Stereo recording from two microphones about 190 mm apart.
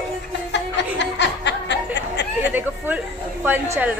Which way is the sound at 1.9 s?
65° left (ahead or behind).